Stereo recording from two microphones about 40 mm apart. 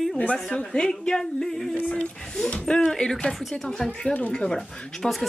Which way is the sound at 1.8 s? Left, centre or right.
Left.